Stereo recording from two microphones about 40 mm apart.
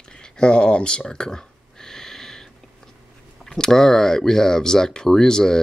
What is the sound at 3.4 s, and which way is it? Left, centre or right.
Speech, centre.